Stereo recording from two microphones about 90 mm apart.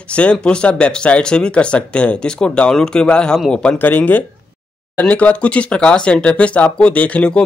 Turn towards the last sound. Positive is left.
turn(degrees=10)  # may be behind; listen again after turning